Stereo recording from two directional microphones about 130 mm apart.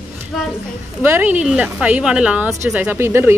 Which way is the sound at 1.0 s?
15° right (ahead or behind).